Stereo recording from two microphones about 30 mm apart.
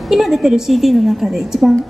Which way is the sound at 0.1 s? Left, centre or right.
Centre.